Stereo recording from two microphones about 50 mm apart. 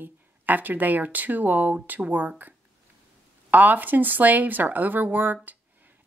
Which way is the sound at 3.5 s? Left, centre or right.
Right.